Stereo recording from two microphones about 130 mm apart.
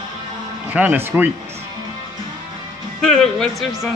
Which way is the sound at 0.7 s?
15° right (ahead or behind).